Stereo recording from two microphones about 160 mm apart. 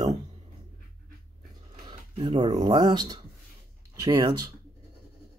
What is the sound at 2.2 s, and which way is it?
Speech, 30° right (ahead or behind).